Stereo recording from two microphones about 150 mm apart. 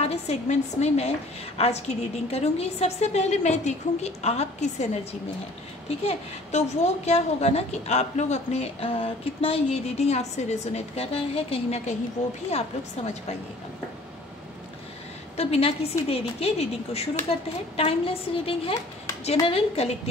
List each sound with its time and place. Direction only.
0.0 s a woman's voice: 45° left (ahead or behind)
5.9 s a woman's voice: 45° left (ahead or behind)
15.3 s a woman's voice: 45° left (ahead or behind)